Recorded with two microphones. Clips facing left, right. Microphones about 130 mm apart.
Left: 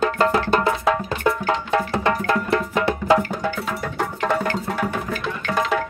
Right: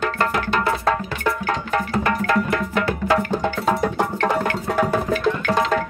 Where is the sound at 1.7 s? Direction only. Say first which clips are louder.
Even; 25° left (ahead or behind).